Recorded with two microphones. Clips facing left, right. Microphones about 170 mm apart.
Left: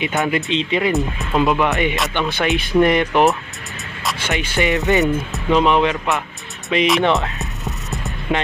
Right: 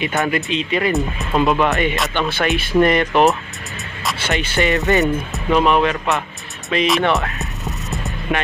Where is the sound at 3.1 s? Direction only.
20° right (ahead or behind).